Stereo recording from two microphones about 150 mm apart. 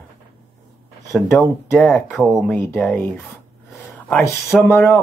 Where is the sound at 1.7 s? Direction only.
5° left (ahead or behind).